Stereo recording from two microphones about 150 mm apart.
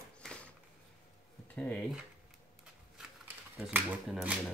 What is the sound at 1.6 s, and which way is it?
Speech, 10° left (ahead or behind).